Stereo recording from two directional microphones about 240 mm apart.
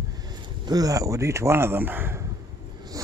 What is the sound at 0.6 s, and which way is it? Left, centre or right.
Speech, centre.